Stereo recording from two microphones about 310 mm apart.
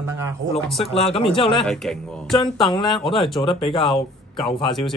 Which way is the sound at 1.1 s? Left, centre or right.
Centre.